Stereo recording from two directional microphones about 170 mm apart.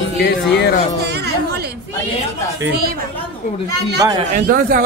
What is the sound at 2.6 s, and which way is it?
Speech, 65° right (ahead or behind).